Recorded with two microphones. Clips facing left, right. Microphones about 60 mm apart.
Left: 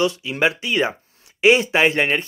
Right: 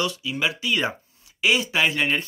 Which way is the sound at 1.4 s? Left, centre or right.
Left.